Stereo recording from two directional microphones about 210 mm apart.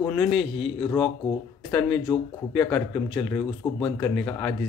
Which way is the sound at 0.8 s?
20° left (ahead or behind).